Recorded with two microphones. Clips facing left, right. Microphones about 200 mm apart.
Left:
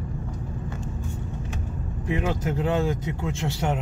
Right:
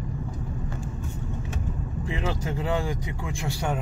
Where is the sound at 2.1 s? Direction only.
20° left (ahead or behind).